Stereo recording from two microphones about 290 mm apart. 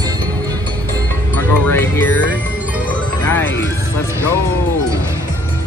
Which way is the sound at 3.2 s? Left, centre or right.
Centre.